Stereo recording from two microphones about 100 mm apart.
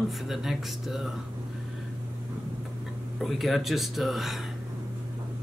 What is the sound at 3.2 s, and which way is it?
Speech, centre (ahead or behind).